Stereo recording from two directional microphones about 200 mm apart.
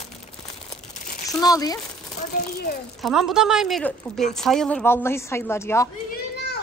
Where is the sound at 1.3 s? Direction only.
20° left (ahead or behind).